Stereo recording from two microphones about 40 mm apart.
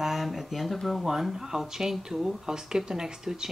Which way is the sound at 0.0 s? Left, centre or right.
Centre.